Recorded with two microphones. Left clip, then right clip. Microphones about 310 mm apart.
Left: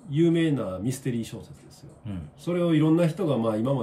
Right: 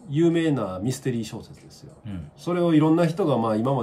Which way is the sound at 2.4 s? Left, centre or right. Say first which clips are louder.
Right 3 dB; centre.